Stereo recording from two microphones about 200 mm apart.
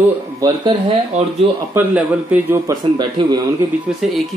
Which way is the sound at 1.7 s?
10° right (ahead or behind).